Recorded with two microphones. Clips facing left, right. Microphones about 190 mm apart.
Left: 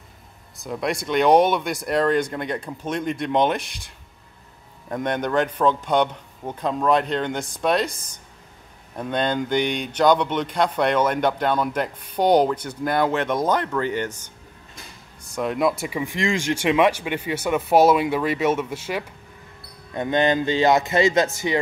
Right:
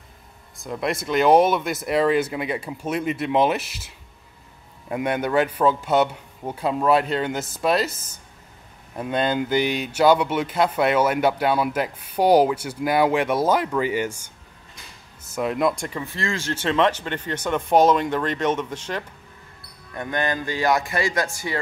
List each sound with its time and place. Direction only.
0.6 s speech: centre (ahead or behind)
15.3 s speech: centre (ahead or behind)
19.9 s speech: 20° left (ahead or behind)